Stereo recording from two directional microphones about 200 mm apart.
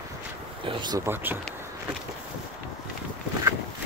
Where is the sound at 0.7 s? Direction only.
20° right (ahead or behind).